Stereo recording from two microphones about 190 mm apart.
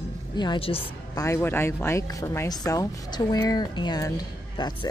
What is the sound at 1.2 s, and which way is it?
Speech, 10° left (ahead or behind).